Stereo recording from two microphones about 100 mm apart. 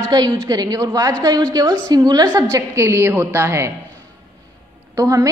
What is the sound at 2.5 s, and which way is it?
A woman's voice, 30° right (ahead or behind).